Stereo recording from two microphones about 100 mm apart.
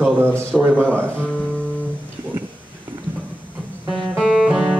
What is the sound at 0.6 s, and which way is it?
Speech, 25° right (ahead or behind).